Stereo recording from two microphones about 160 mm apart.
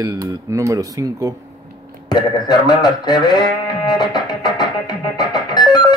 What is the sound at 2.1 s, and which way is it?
Music, 25° left (ahead or behind).